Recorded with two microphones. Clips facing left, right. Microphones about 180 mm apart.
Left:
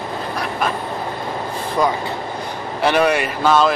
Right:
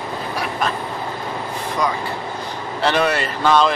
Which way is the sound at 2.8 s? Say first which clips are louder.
Left 3 dB; 10° left (ahead or behind).